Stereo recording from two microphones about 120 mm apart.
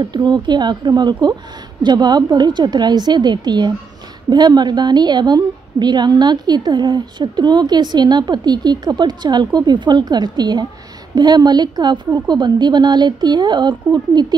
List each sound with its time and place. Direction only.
0.0 s a woman's voice: 40° right (ahead or behind)